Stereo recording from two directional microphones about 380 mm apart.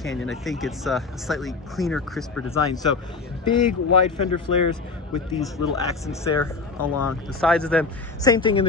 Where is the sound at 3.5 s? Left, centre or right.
Left.